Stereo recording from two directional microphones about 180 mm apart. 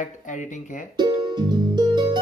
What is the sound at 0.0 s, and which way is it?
Speech, 45° left (ahead or behind).